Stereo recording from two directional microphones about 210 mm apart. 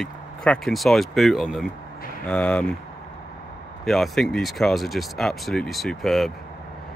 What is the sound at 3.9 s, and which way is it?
Speech, centre (ahead or behind).